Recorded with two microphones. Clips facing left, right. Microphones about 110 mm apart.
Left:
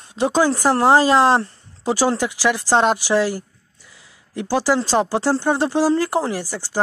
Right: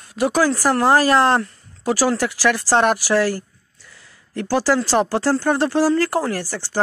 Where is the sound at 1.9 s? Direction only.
20° left (ahead or behind).